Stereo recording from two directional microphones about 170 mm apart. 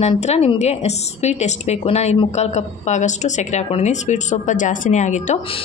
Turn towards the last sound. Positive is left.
turn(degrees=45)  # may be behind; listen again after turning